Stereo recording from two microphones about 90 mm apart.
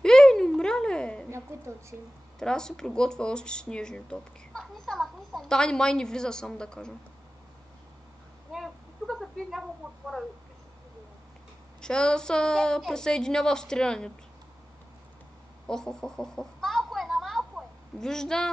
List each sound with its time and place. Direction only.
0.0 s a sound: 5° left (ahead or behind)
1.5 s a woman's voice: 30° right (ahead or behind)
2.3 s speech: 5° left (ahead or behind)
8.5 s a woman's voice: centre (ahead or behind)
11.8 s speech: 10° left (ahead or behind)
15.6 s a sound: 5° left (ahead or behind)